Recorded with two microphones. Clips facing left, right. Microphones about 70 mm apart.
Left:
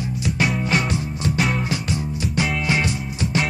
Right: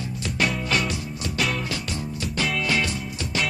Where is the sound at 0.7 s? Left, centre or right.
Left.